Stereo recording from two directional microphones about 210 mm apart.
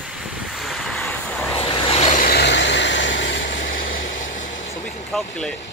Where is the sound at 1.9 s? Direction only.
30° left (ahead or behind).